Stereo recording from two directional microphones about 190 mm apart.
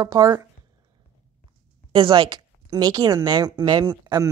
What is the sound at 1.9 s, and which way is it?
Speech, 25° right (ahead or behind).